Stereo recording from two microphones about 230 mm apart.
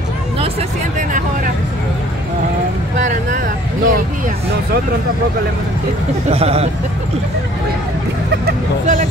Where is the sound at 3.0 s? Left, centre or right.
Right.